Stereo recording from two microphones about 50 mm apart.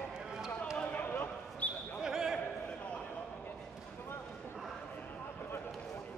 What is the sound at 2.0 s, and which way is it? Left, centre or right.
Basketball bounce, centre.